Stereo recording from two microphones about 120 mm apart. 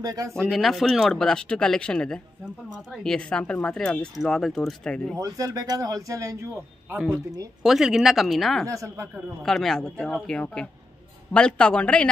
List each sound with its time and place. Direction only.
0.0 s speech: 30° right (ahead or behind)
0.4 s speech: centre (ahead or behind)
5.1 s a man's voice: 30° right (ahead or behind)
7.6 s speech: 5° right (ahead or behind)
8.6 s a man's voice: 25° right (ahead or behind)
9.4 s speech: 5° left (ahead or behind)